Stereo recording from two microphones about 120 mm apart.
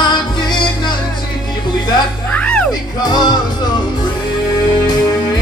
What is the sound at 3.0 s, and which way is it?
Music, 35° left (ahead or behind).